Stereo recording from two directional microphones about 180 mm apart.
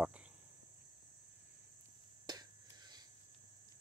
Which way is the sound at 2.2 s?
20° right (ahead or behind).